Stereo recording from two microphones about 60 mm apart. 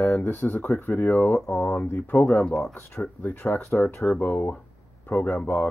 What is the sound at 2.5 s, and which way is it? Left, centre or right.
Speech, centre.